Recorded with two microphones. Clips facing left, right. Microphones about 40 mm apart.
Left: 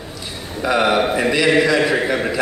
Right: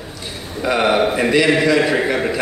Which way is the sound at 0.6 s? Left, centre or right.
Centre.